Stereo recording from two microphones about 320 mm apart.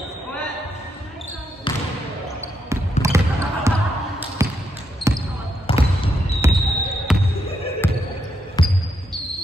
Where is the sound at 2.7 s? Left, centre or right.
Centre.